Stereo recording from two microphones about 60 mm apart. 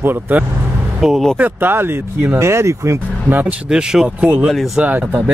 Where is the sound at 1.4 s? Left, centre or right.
Right.